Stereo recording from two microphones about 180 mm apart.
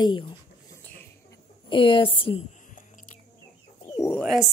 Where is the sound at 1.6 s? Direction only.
30° left (ahead or behind).